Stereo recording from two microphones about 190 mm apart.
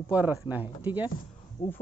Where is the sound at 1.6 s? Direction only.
45° left (ahead or behind).